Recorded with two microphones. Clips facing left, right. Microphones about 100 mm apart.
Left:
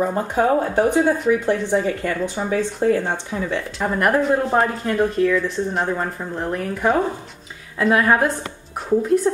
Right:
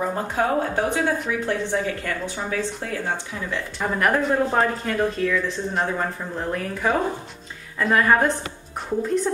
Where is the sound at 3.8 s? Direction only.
5° left (ahead or behind).